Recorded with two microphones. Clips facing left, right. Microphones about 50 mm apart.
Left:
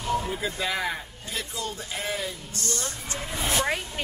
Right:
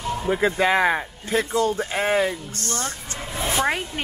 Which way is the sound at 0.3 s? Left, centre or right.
Right.